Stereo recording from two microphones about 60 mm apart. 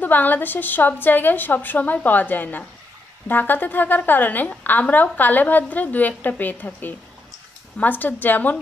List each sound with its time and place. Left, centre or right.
0.0 s a woman's voice: left
8.0 s a woman's voice: left